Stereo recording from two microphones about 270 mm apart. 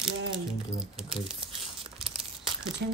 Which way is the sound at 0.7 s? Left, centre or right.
Centre.